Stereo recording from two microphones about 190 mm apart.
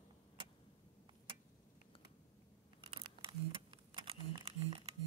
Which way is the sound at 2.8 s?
25° right (ahead or behind).